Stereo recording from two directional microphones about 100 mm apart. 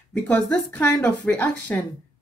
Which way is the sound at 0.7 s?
10° left (ahead or behind).